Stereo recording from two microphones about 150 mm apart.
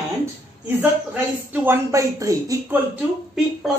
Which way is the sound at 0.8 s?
15° right (ahead or behind).